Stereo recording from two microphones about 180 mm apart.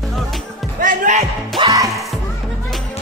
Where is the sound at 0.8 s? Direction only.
45° right (ahead or behind).